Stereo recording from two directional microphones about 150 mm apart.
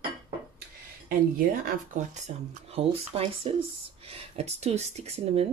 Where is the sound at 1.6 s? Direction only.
55° right (ahead or behind).